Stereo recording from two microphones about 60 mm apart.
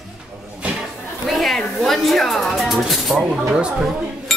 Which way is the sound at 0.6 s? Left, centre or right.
Right.